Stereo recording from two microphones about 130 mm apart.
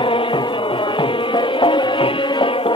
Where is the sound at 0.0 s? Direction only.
40° left (ahead or behind).